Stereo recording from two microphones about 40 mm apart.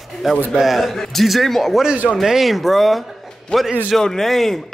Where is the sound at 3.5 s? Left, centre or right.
Centre.